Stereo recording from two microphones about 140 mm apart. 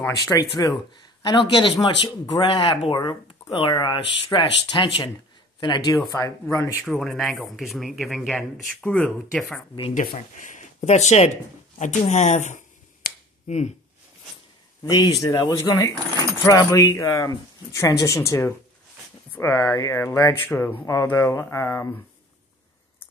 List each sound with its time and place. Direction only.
0.1 s speech: 25° left (ahead or behind)
6.0 s speech: 20° left (ahead or behind)
6.8 s speech: centre (ahead or behind)
8.8 s speech: 10° left (ahead or behind)
9.9 s speech: 65° left (ahead or behind)
11.8 s finger snapping: 60° left (ahead or behind)
14.8 s speech: 30° left (ahead or behind)